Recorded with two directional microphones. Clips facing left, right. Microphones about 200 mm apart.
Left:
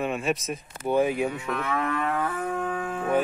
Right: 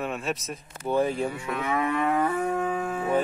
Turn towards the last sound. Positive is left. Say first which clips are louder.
# right 2 dB
turn(degrees=-10)  # may be behind; listen again after turning